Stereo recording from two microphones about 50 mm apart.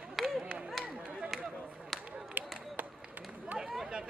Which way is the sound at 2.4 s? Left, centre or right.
Right.